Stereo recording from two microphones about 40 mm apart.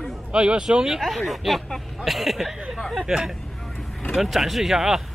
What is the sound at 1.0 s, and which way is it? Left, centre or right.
Speech, centre.